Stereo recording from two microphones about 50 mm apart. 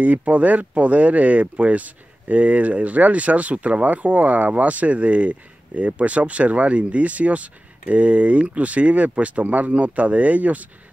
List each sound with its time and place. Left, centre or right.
0.0 s speech: right